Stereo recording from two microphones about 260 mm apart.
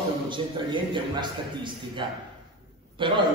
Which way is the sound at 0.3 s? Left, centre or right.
Centre.